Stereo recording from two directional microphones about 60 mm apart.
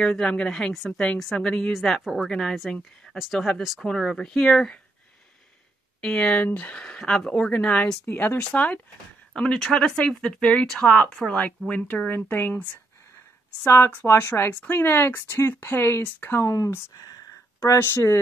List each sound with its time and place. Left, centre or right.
0.0 s a woman's voice: centre
1.7 s a woman's voice: centre
5.9 s speech: centre
8.1 s speech: left
9.3 s a woman's voice: centre
11.7 s speech: left
12.1 s speech: left
13.7 s speech: left
16.4 s speech: left
16.9 s speech: left
17.7 s speech: left